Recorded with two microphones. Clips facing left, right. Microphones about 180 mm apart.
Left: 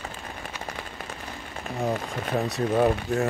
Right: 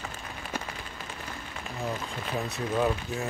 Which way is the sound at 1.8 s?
35° left (ahead or behind).